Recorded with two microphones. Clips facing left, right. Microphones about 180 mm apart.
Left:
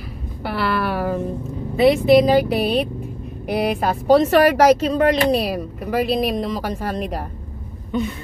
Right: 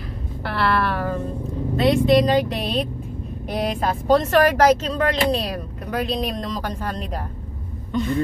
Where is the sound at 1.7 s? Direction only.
5° left (ahead or behind).